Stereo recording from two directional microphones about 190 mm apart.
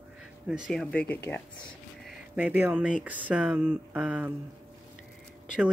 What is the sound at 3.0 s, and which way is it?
Speech, 5° right (ahead or behind).